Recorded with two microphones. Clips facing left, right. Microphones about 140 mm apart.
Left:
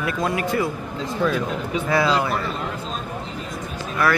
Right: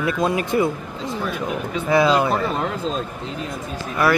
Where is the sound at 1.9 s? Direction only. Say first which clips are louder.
Right 4 dB; 20° right (ahead or behind).